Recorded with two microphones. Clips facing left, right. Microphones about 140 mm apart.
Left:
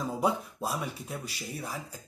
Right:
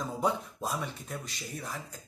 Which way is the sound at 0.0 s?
5° left (ahead or behind).